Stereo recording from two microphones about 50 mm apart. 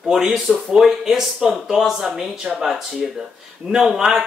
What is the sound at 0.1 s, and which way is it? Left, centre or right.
Speech, centre.